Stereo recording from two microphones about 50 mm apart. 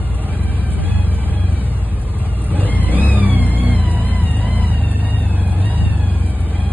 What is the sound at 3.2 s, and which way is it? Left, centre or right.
Music, right.